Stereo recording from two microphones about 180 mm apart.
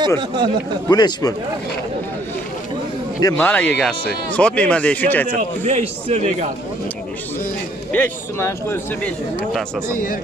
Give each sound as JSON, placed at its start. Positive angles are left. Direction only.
{"t": 0.2, "sound": "speech", "side_deg": -25}
{"t": 0.8, "sound": "a man's voice", "side_deg": 20}
{"t": 3.2, "sound": "a man's voice", "side_deg": 15}
{"t": 5.6, "sound": "a man's voice", "side_deg": -40}
{"t": 7.9, "sound": "a man's voice", "side_deg": 15}